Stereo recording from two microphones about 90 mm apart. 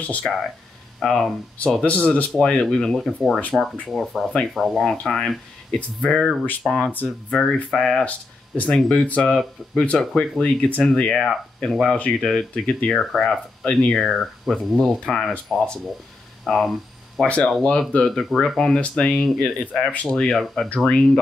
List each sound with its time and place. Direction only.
0.0 s speech: 15° left (ahead or behind)
0.9 s speech: 5° left (ahead or behind)
6.6 s speech: centre (ahead or behind)
7.2 s speech: 10° left (ahead or behind)